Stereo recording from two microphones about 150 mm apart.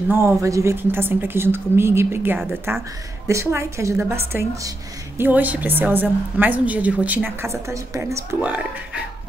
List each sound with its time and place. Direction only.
0.1 s a woman's voice: 20° right (ahead or behind)